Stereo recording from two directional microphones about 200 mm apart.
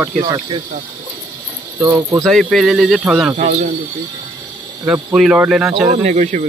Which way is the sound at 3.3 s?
30° right (ahead or behind).